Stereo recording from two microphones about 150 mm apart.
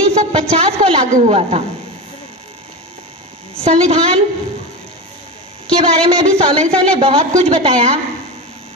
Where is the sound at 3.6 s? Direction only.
40° right (ahead or behind).